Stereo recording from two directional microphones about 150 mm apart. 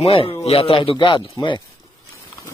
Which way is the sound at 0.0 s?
40° left (ahead or behind).